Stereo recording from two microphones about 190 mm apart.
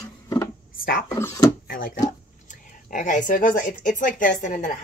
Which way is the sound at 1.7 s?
45° left (ahead or behind).